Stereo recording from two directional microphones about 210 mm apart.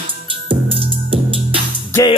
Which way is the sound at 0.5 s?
25° right (ahead or behind).